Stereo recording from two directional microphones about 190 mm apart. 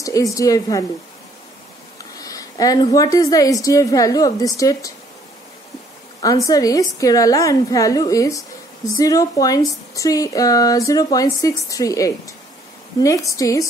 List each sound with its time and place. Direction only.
0.0 s a woman's voice: 15° left (ahead or behind)
2.0 s a woman's voice: 20° left (ahead or behind)
6.2 s a woman's voice: 20° left (ahead or behind)